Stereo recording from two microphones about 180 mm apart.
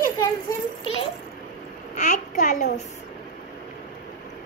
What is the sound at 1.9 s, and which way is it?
Speech, 40° left (ahead or behind).